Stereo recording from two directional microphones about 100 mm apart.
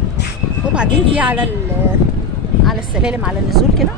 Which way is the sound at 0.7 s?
15° right (ahead or behind).